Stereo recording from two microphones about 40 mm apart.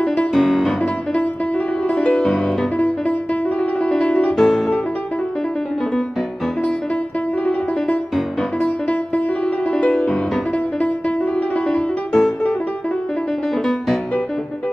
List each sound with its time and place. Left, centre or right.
0.0 s music: centre
0.3 s music: centre
2.0 s music: centre
3.9 s music: centre
9.7 s music: left
11.5 s music: centre